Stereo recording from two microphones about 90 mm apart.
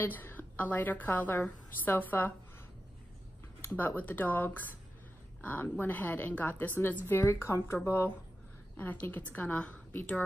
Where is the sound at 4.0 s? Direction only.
20° left (ahead or behind).